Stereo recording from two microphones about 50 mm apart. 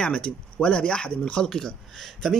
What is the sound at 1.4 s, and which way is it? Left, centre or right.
Speech, centre.